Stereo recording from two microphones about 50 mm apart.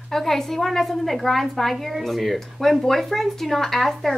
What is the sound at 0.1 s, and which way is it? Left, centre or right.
A woman's voice, centre.